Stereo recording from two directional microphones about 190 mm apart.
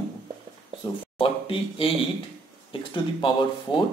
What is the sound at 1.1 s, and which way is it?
Speech, 30° left (ahead or behind).